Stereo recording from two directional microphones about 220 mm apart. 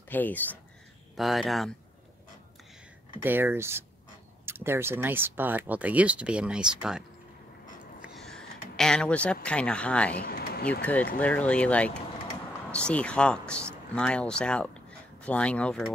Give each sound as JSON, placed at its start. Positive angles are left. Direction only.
{"t": 0.1, "sound": "speech", "side_deg": 10}
{"t": 3.2, "sound": "speech", "side_deg": -10}
{"t": 10.1, "sound": "a sound", "side_deg": 45}
{"t": 10.8, "sound": "speech", "side_deg": 5}